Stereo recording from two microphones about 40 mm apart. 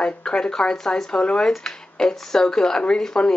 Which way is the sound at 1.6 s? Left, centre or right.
Centre.